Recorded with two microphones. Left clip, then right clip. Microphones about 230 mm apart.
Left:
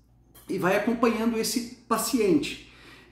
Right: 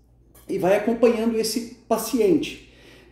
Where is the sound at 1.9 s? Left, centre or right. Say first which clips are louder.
Right 4 dB; centre.